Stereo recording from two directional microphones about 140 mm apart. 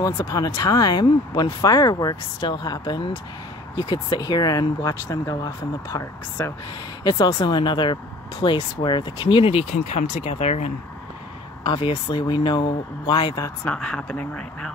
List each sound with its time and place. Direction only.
0.0 s speech: 25° left (ahead or behind); by 10.7 s 50° left (ahead or behind)
11.6 s speech: 35° left (ahead or behind)
13.7 s speech: 5° left (ahead or behind)